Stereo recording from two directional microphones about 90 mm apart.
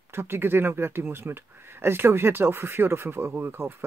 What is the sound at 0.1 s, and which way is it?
Speech, 25° right (ahead or behind).